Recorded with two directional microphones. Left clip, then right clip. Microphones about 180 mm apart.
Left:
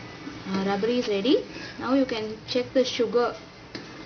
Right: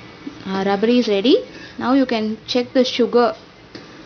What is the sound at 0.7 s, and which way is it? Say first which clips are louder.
A woman's voice: right 8 dB; 50° right (ahead or behind).